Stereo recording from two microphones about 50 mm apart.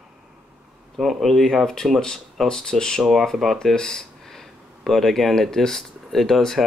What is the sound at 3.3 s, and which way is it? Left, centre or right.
Speech, centre.